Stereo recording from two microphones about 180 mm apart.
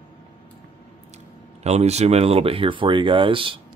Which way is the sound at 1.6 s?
35° right (ahead or behind).